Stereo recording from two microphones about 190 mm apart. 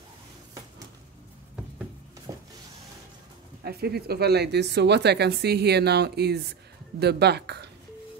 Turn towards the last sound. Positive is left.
turn(degrees=-60)  # may be behind; listen again after turning